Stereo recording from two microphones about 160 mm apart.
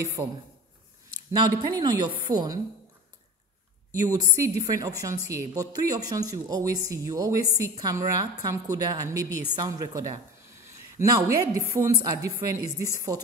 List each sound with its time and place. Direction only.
0.0 s speech: 20° right (ahead or behind)
1.3 s speech: 25° right (ahead or behind)
3.9 s a woman's voice: 20° right (ahead or behind)